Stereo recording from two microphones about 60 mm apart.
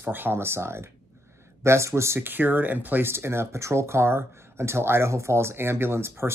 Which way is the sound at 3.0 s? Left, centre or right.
Right.